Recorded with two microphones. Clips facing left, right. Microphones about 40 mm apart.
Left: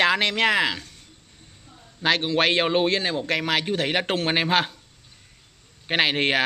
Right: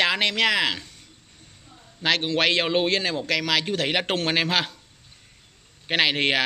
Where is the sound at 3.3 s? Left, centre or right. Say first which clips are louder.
Right 1 dB; right.